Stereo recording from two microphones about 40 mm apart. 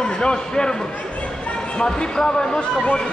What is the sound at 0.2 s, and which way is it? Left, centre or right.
Speech, left.